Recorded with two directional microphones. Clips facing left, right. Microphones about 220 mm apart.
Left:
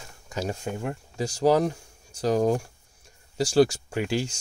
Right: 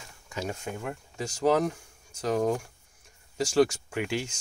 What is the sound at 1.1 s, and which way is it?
Speech, 35° left (ahead or behind).